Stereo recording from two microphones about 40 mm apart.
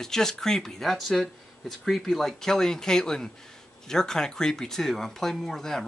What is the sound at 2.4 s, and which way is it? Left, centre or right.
Speech, centre.